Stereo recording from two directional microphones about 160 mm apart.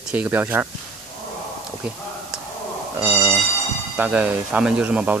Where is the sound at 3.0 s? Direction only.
10° right (ahead or behind).